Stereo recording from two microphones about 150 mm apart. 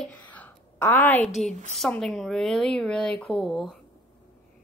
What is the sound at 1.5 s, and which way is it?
Speech, 55° right (ahead or behind).